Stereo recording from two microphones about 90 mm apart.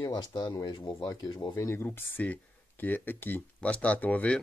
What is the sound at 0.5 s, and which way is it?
Speech, 45° left (ahead or behind).